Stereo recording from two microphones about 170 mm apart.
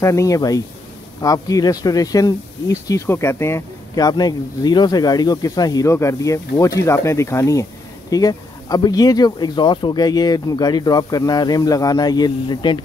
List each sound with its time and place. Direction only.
0.0 s speech: 20° left (ahead or behind)